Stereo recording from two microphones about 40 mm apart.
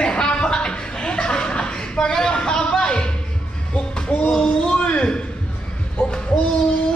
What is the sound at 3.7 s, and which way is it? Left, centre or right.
Music, left.